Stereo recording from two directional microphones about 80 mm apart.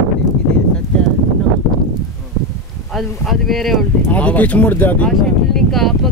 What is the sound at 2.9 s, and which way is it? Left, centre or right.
Speech, centre.